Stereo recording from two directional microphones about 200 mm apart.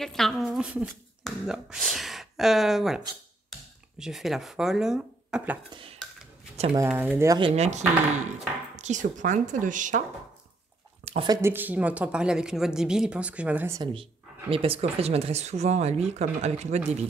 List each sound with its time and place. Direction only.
0.0 s speech: centre (ahead or behind)
4.0 s speech: centre (ahead or behind)
5.7 s speech: 25° right (ahead or behind)
6.5 s a sound: 30° right (ahead or behind)
6.8 s speech: 10° right (ahead or behind)
7.3 s speech: 30° right (ahead or behind)
11.1 s speech: 25° right (ahead or behind)
11.4 s speech: 10° right (ahead or behind)
14.5 s speech: 30° right (ahead or behind)